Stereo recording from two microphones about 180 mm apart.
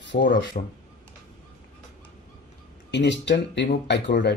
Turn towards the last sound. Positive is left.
turn(degrees=75)  # may be behind; listen again after turning